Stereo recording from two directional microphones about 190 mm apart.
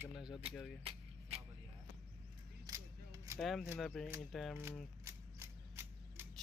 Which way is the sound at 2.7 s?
15° right (ahead or behind).